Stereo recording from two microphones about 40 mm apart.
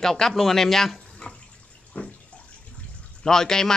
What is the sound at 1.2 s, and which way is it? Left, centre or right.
Water, left.